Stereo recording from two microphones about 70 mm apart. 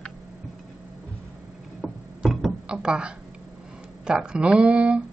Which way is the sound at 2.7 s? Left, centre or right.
Centre.